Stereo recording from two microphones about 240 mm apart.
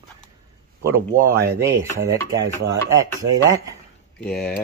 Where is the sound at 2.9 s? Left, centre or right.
Centre.